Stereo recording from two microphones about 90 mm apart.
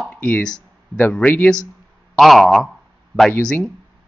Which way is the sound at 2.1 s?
Centre (ahead or behind).